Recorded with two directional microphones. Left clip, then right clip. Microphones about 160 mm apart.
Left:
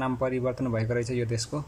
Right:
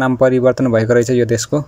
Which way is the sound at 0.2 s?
45° right (ahead or behind).